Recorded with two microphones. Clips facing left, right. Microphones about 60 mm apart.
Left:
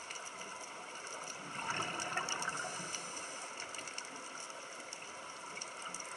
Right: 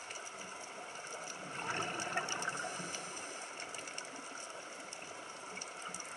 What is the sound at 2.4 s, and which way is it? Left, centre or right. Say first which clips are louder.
Water: even; centre.